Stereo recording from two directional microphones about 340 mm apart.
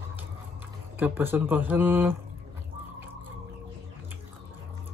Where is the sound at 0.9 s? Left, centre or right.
Centre.